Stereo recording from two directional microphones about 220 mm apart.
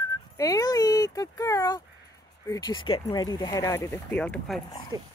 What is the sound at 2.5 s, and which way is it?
Speech, 20° left (ahead or behind).